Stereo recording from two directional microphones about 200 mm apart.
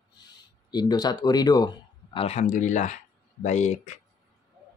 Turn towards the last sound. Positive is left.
turn(degrees=35)  # may be behind; listen again after turning